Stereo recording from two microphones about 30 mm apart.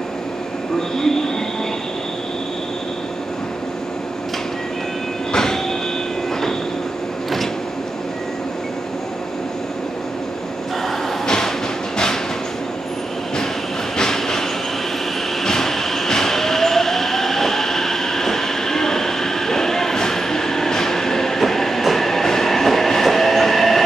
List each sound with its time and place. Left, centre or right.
0.9 s train: centre
5.3 s train: left
11.2 s train: centre
13.9 s train: centre
15.4 s train: centre